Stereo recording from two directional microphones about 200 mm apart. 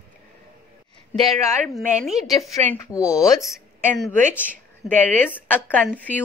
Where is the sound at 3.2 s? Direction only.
15° left (ahead or behind).